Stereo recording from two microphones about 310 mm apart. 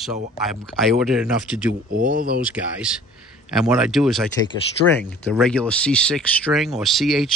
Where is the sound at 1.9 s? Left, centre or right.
Right.